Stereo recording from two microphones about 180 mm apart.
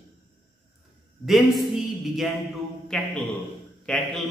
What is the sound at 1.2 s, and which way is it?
Speech, centre (ahead or behind).